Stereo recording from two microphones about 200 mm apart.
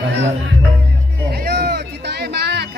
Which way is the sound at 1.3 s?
50° right (ahead or behind).